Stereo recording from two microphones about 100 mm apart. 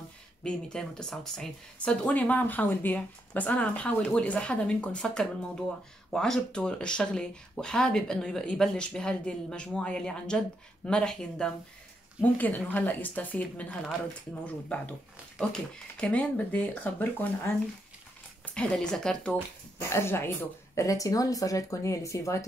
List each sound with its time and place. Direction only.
0.4 s speech: 5° left (ahead or behind)
15.5 s speech: 10° left (ahead or behind)
19.8 s speech: 25° left (ahead or behind)